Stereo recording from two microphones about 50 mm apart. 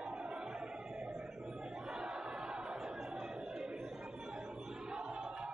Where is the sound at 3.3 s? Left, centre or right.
Centre.